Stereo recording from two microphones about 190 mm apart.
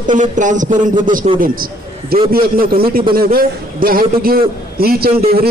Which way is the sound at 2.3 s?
50° right (ahead or behind).